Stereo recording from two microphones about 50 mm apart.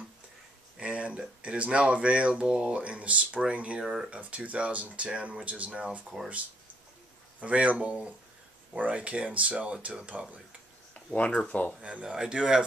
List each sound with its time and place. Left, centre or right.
0.7 s speech: right
6.1 s speech: centre
7.3 s speech: right
8.7 s speech: right
11.1 s speech: left
11.8 s speech: right